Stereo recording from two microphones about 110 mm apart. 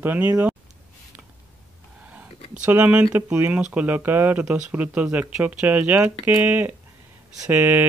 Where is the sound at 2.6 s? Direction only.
15° right (ahead or behind).